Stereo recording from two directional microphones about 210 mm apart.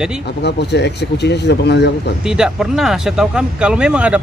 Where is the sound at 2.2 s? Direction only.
5° right (ahead or behind).